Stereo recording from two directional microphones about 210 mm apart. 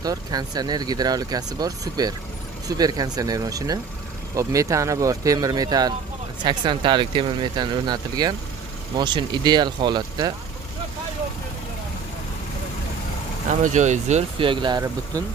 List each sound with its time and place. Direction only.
0.0 s speech: 20° right (ahead or behind)
13.7 s speech: 35° right (ahead or behind); by 15.2 s 20° right (ahead or behind)